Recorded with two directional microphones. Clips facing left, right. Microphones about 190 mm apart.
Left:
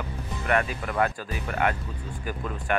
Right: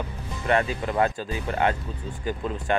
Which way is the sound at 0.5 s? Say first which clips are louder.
Right 3 dB; 25° right (ahead or behind).